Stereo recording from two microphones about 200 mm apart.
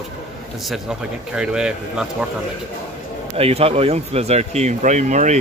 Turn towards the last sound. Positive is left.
turn(degrees=-35)  # may be behind; listen again after turning